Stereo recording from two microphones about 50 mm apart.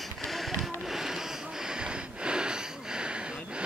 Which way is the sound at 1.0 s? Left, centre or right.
Centre.